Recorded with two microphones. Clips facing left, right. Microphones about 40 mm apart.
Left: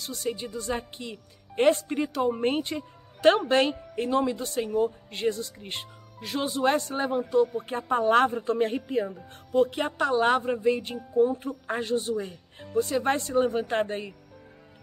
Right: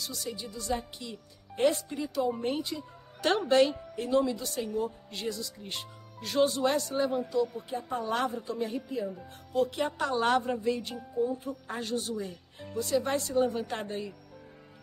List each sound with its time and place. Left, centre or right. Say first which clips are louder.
0.0 s speech: left 6 dB; left
3.2 s speech: left 3 dB; left
6.1 s speech: right 3 dB; centre
6.6 s a woman's voice: left 3 dB; left
9.5 s speech: left 5 dB; left
10.1 s a woman's voice: left 3 dB; centre
11.1 s a woman's voice: left 7 dB; left
11.6 s a woman's voice: left 9 dB; left
12.1 s speech: left 5 dB; left